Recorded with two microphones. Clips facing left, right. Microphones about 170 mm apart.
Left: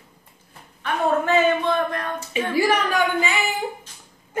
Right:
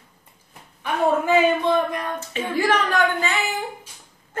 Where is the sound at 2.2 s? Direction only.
10° left (ahead or behind).